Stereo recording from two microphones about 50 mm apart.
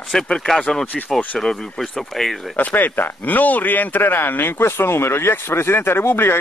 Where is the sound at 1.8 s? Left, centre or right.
Centre.